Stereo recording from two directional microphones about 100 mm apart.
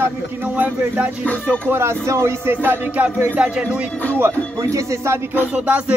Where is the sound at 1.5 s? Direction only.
25° right (ahead or behind).